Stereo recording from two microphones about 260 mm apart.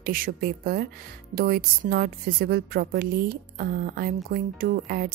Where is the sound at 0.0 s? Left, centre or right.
Right.